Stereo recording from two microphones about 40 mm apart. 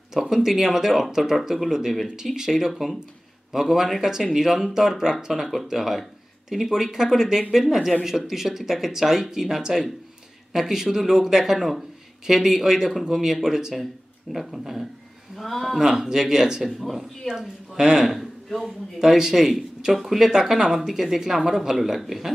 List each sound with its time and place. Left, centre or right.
0.1 s a woman's voice: centre
4.7 s a woman's voice: centre
5.3 s a man's voice: centre
15.8 s a woman's voice: centre
16.6 s a man's voice: centre
17.3 s a woman's voice: centre
18.0 s a man's voice: centre
18.6 s a woman's voice: centre